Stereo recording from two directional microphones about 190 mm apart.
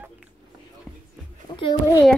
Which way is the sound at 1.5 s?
25° left (ahead or behind).